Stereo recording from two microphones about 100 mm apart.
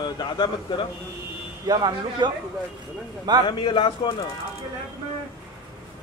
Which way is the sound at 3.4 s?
50° left (ahead or behind).